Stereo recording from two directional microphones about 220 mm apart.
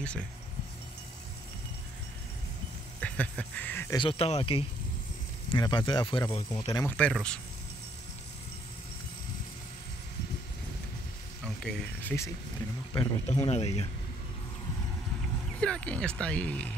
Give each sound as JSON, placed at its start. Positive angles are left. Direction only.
{"t": 0.0, "sound": "speech", "side_deg": 5}
{"t": 3.0, "sound": "a sound", "side_deg": 5}
{"t": 4.0, "sound": "speech", "side_deg": 25}
{"t": 11.4, "sound": "speech", "side_deg": 5}
{"t": 12.9, "sound": "speech", "side_deg": 25}
{"t": 15.6, "sound": "speech", "side_deg": 5}